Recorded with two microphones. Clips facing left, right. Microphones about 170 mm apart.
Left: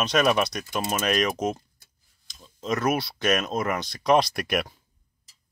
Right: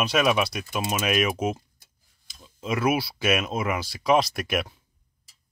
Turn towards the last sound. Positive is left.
turn(degrees=0)  # may be behind; listen again after turning